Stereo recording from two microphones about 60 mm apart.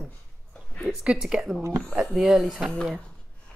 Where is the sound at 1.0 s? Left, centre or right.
Centre.